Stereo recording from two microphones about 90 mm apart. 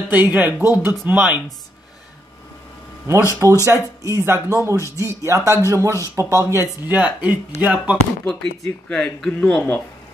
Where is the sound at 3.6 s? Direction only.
35° right (ahead or behind).